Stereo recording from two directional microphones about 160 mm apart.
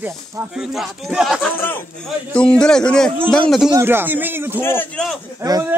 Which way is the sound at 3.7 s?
15° right (ahead or behind).